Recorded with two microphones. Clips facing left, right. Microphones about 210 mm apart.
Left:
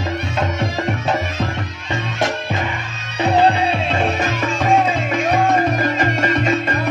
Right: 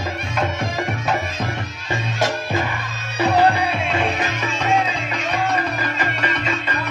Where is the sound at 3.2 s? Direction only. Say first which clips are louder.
Left 2 dB; 25° left (ahead or behind).